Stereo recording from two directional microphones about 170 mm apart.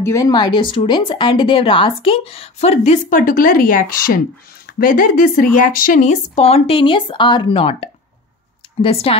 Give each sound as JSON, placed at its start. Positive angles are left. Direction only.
{"t": 0.0, "sound": "speech", "side_deg": 20}